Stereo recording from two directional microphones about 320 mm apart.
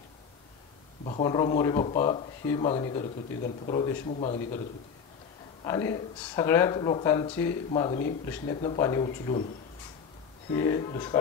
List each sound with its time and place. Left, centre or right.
1.0 s speech: centre
5.6 s speech: centre
10.5 s speech: centre